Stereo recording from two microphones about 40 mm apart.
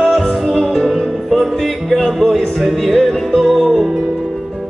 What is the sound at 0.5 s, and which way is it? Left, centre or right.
Music, centre.